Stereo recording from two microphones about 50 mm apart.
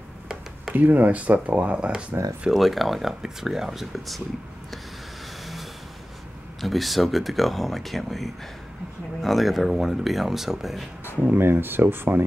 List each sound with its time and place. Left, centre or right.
0.7 s speech: right; by 2.1 s centre
2.5 s speech: centre
6.6 s speech: centre
11.3 s speech: right